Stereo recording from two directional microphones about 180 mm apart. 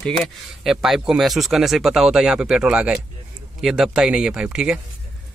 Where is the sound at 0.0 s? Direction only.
Centre (ahead or behind).